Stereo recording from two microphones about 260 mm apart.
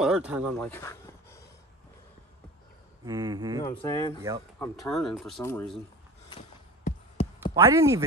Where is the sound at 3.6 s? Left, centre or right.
Centre.